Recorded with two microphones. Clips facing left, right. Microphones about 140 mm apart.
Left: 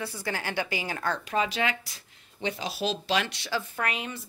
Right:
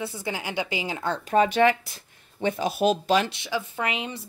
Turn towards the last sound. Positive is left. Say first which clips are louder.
# right 3 dB
turn(degrees=-25)  # may be behind; listen again after turning